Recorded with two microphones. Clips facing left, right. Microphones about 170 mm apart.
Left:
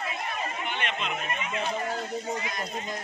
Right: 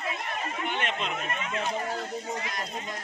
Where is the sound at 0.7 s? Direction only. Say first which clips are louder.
Right 1 dB; 40° right (ahead or behind).